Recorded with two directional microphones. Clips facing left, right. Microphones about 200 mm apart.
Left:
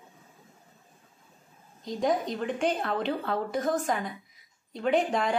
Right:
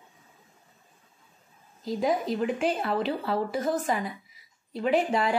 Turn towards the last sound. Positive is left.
turn(degrees=-5)  # may be behind; listen again after turning